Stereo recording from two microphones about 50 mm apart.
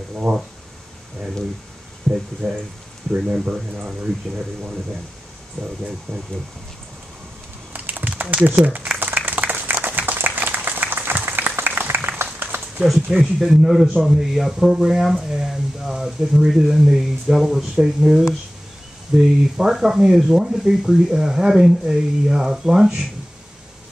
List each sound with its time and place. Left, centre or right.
0.1 s speech: right
2.1 s speech: centre
7.7 s a sound: right
8.5 s speech: right
9.0 s a sound: right
13.2 s speech: centre